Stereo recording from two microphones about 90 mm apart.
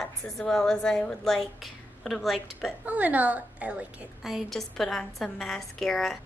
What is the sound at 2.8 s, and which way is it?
A woman's voice, 15° right (ahead or behind).